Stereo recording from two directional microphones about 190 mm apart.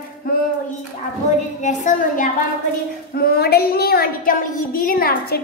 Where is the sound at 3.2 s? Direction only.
55° left (ahead or behind).